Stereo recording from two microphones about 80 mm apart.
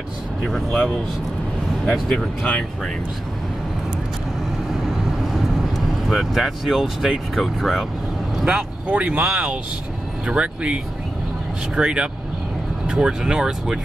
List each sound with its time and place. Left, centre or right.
0.4 s speech: centre
2.1 s speech: centre
6.0 s speech: centre
8.4 s speech: centre